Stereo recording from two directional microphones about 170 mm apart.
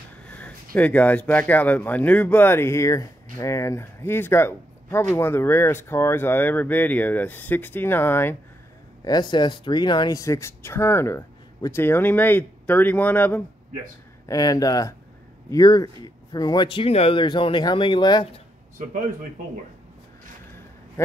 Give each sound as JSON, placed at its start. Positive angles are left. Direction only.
{"t": 0.2, "sound": "a sound", "side_deg": 5}
{"t": 0.7, "sound": "speech", "side_deg": 10}
{"t": 9.0, "sound": "speech", "side_deg": 25}
{"t": 14.2, "sound": "speech", "side_deg": 20}